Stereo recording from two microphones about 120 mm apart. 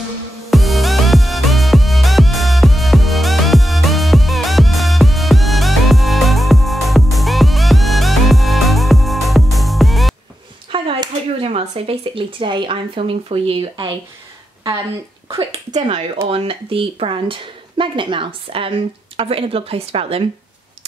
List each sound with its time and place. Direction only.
0.5 s music: centre (ahead or behind)
10.7 s speech: 45° right (ahead or behind)
15.2 s speech: 50° right (ahead or behind)